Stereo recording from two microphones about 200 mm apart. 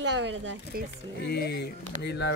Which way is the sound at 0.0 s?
60° right (ahead or behind).